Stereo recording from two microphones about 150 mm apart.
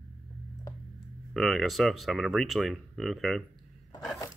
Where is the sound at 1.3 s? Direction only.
Centre (ahead or behind).